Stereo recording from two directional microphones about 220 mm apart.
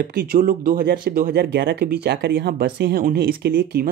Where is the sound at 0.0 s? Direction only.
45° right (ahead or behind).